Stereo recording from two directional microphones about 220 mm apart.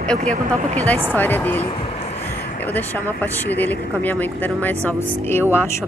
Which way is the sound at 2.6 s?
10° left (ahead or behind).